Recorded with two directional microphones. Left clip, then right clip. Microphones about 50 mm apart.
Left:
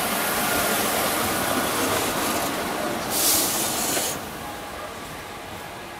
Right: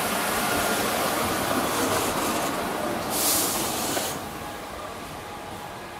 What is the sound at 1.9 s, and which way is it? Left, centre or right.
Train, left.